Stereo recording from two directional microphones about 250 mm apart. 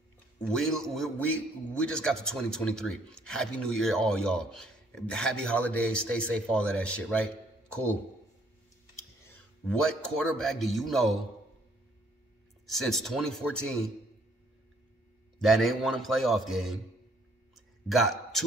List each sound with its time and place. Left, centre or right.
0.4 s a man's voice: centre
9.7 s a man's voice: centre
12.6 s a man's voice: centre
15.4 s a man's voice: centre
17.8 s a man's voice: centre